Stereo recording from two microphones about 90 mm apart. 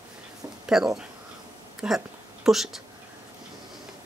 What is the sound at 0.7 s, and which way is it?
Speech, 5° right (ahead or behind).